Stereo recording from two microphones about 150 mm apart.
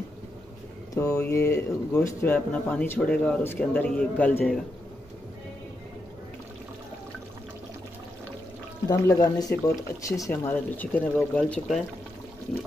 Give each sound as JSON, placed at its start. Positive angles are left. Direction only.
{"t": 1.1, "sound": "speech", "side_deg": 15}
{"t": 8.8, "sound": "speech", "side_deg": 20}